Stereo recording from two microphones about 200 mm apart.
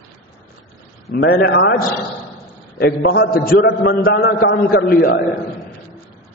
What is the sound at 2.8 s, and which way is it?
A man's voice, 50° left (ahead or behind).